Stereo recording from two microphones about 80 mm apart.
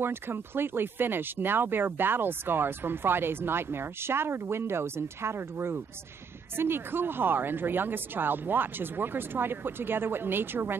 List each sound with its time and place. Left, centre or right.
0.0 s speech: right